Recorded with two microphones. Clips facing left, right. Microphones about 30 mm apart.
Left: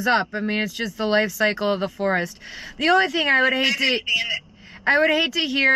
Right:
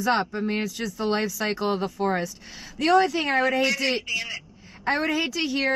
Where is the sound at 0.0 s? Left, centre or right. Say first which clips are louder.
Left 3 dB; left.